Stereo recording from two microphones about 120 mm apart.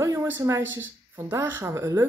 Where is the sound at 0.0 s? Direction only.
20° right (ahead or behind).